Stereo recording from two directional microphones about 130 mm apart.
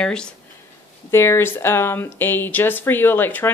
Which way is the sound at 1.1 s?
20° left (ahead or behind).